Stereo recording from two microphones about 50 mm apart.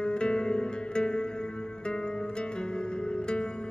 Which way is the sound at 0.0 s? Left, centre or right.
Centre.